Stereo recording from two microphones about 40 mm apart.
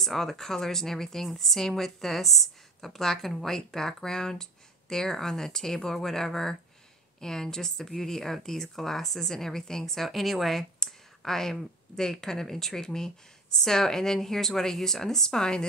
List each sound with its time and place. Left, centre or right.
0.0 s speech: centre